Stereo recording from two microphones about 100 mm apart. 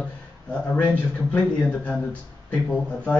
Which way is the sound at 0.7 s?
15° left (ahead or behind).